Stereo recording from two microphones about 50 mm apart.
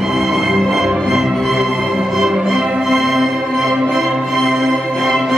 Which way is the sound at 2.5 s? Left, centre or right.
Right.